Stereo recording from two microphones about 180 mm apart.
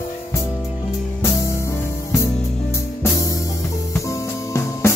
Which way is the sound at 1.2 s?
15° left (ahead or behind).